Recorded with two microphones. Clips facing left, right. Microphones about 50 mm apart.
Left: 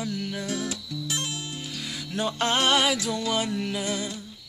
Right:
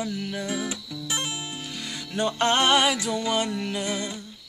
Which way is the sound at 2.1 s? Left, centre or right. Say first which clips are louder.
Right 3 dB; centre.